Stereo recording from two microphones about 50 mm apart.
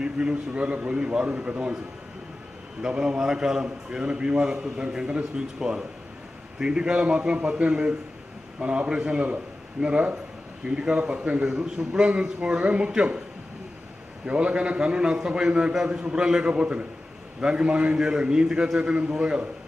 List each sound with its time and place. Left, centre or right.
0.0 s a man's voice: centre
2.8 s a man's voice: centre
14.2 s a man's voice: right